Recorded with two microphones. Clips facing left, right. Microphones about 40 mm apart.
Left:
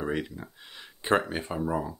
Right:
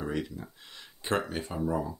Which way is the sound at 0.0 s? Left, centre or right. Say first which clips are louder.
Left 2 dB; left.